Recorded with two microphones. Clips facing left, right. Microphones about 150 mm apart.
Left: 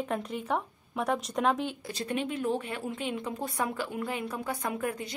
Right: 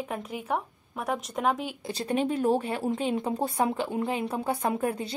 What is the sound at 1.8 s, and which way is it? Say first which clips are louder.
Speech: right 5 dB; 30° right (ahead or behind).